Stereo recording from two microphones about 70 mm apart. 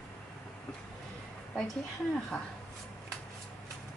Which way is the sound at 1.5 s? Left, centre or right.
Centre.